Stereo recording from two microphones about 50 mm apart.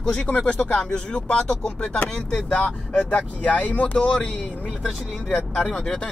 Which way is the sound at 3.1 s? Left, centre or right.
Left.